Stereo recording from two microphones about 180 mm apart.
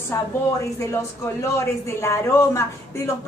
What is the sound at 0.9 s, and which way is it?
A woman's voice, 15° left (ahead or behind).